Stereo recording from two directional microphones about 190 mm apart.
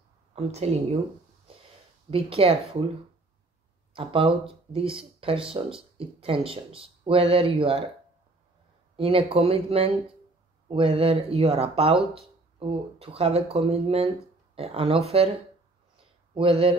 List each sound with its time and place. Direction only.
0.3 s speech: 35° right (ahead or behind)
2.0 s speech: 30° right (ahead or behind)
3.9 s speech: 30° right (ahead or behind)
8.9 s speech: 30° right (ahead or behind)
16.3 s speech: 30° right (ahead or behind)